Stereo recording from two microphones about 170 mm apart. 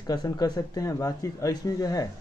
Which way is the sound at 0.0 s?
25° left (ahead or behind).